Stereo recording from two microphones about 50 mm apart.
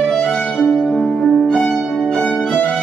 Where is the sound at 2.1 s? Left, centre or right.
Left.